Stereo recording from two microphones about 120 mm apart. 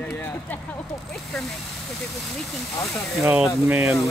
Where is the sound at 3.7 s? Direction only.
15° right (ahead or behind).